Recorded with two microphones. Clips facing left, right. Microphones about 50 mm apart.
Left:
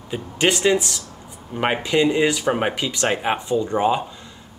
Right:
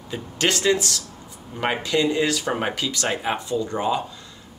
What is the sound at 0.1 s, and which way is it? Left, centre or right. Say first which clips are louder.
Speech: left 3 dB; centre.